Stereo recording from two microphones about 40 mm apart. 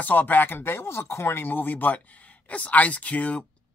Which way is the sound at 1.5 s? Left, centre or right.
Left.